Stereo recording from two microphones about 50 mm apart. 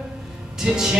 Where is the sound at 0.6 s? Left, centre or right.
Centre.